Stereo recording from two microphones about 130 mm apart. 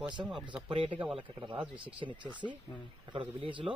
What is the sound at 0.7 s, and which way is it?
Speech, 45° right (ahead or behind).